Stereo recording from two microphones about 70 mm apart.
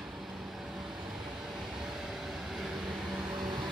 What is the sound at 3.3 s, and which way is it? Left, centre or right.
Vehicle, right.